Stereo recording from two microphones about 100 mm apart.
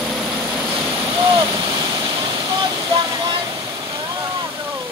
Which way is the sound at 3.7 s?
35° right (ahead or behind).